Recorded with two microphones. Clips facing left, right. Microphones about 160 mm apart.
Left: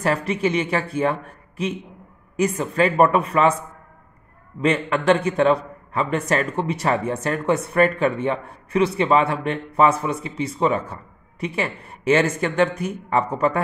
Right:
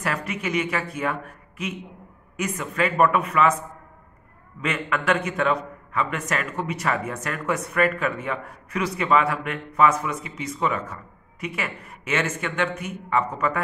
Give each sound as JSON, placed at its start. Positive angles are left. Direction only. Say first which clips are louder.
{"t": 0.0, "sound": "a man's voice", "louder": "left 7 dB", "side_deg": 30}